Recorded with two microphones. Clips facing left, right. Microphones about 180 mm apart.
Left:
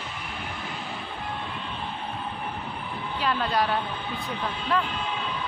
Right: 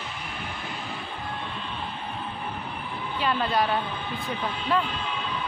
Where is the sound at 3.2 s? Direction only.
Centre (ahead or behind).